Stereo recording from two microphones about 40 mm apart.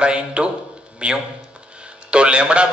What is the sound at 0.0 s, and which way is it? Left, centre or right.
Speech, right.